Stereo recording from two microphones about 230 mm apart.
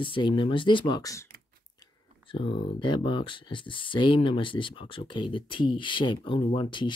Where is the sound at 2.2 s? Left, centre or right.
Left.